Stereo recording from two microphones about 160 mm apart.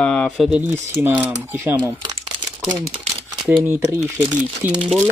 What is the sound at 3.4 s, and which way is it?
Speech, 10° right (ahead or behind).